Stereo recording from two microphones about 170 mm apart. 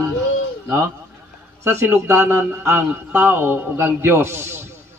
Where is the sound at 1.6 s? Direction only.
15° right (ahead or behind).